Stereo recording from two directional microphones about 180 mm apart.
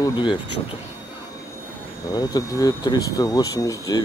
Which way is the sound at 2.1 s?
20° left (ahead or behind).